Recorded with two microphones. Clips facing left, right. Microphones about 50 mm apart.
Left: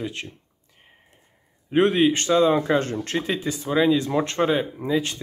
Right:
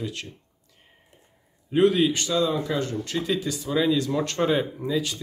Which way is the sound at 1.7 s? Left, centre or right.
Left.